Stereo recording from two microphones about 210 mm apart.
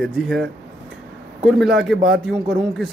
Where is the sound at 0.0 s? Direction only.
Centre (ahead or behind).